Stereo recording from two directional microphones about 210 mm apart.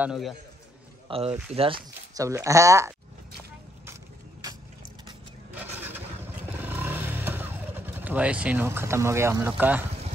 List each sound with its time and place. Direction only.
0.0 s a man's voice: centre (ahead or behind)
1.0 s speech: 25° right (ahead or behind)
2.1 s speech: 15° right (ahead or behind)
3.8 s vehicle: 15° right (ahead or behind)